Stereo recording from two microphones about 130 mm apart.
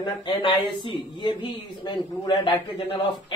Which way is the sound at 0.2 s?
40° left (ahead or behind).